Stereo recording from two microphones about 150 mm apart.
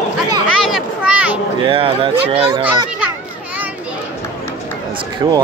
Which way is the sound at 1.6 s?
35° right (ahead or behind).